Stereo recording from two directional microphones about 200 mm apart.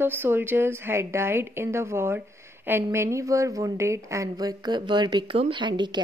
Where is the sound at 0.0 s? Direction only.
10° right (ahead or behind).